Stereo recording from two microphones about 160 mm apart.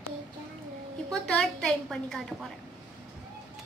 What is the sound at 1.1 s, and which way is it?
A woman's voice, 5° left (ahead or behind).